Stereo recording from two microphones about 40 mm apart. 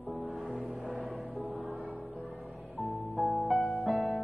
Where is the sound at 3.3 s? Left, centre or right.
Centre.